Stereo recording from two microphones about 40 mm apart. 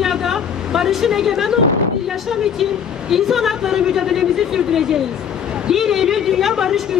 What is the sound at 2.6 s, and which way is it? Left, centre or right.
A woman's voice, centre.